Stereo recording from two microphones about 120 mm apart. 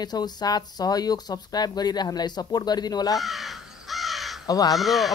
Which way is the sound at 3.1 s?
Centre (ahead or behind).